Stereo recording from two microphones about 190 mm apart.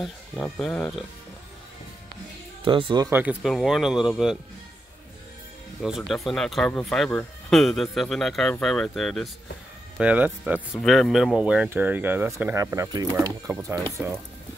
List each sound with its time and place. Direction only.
0.0 s speech: centre (ahead or behind)
2.6 s speech: 25° right (ahead or behind)
3.1 s speech: 10° right (ahead or behind)
5.8 s speech: centre (ahead or behind)